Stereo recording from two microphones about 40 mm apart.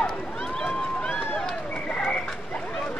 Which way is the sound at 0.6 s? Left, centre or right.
Left.